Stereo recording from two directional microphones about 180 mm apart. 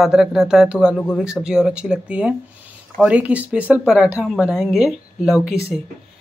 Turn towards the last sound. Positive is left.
turn(degrees=5)  # may be behind; listen again after turning